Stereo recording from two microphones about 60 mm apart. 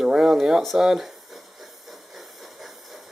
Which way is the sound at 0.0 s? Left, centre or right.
Centre.